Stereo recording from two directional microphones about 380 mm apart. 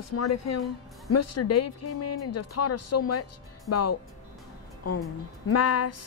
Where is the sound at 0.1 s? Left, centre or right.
Left.